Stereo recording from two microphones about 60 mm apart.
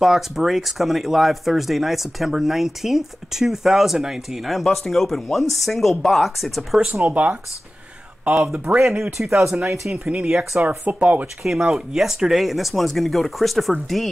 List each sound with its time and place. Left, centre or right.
0.0 s speech: centre
6.9 s speech: right
8.5 s speech: centre
11.4 s speech: centre